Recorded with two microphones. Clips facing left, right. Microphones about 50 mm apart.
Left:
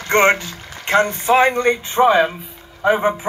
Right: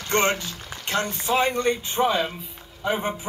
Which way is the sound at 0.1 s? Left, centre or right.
Left.